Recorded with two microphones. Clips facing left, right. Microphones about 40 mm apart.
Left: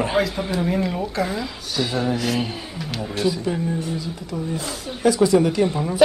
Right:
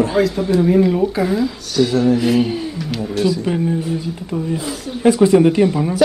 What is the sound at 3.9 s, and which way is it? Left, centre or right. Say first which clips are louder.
Speech: right 6 dB; right.